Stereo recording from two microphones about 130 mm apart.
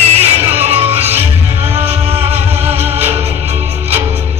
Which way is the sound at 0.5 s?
50° right (ahead or behind).